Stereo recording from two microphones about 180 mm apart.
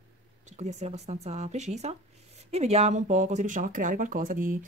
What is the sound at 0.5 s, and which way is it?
Speech, 40° right (ahead or behind).